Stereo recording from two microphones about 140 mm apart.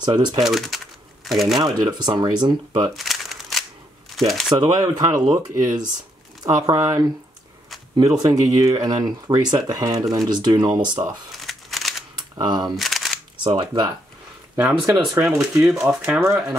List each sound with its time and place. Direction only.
0.0 s speech: 30° right (ahead or behind)
0.4 s speech: centre (ahead or behind)
1.5 s speech: 35° right (ahead or behind)
2.9 s crumpling: centre (ahead or behind)
4.2 s speech: centre (ahead or behind)
4.6 s speech: 30° right (ahead or behind)
5.1 s speech: 15° right (ahead or behind)
6.4 s speech: 30° right (ahead or behind)
8.2 s speech: 25° right (ahead or behind)
11.4 s a sound: centre (ahead or behind)
12.4 s speech: 30° right (ahead or behind)
12.7 s single-lens reflex camera: centre (ahead or behind)
13.4 s speech: 35° right (ahead or behind)
14.5 s speech: 10° right (ahead or behind)